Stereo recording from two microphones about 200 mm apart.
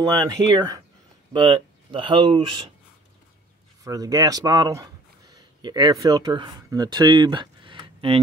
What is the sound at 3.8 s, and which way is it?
Speech, 20° right (ahead or behind).